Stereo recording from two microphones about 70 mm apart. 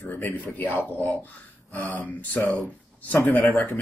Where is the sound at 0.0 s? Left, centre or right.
Left.